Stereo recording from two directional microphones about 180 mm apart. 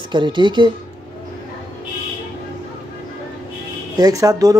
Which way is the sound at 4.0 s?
20° right (ahead or behind).